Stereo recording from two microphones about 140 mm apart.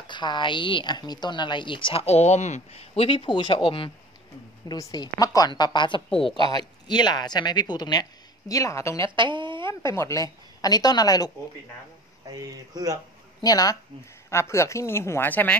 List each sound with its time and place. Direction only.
0.0 s a woman's voice: 35° left (ahead or behind)
4.6 s a woman's voice: 25° left (ahead or behind)
9.1 s speech: 35° right (ahead or behind)
9.7 s a woman's voice: 20° left (ahead or behind)
12.3 s speech: 25° right (ahead or behind)
13.4 s a woman's voice: 25° left (ahead or behind)